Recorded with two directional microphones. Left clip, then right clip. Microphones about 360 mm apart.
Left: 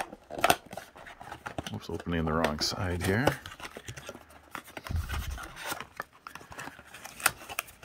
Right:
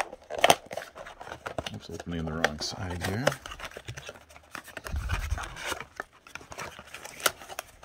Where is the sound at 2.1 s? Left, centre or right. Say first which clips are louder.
Left 1 dB; centre.